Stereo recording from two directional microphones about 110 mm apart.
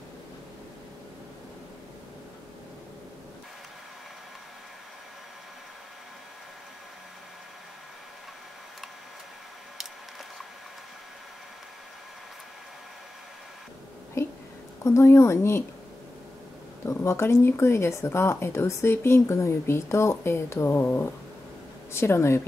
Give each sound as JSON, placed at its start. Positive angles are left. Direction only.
{"t": 14.2, "sound": "a sound", "side_deg": 25}
{"t": 14.8, "sound": "speech", "side_deg": 25}
{"t": 16.8, "sound": "speech", "side_deg": 25}